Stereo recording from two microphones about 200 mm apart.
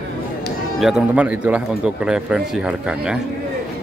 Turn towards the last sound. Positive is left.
turn(degrees=-5)  # may be behind; listen again after turning